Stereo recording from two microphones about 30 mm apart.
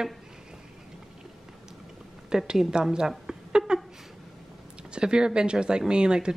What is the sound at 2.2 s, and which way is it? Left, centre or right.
Speech, right.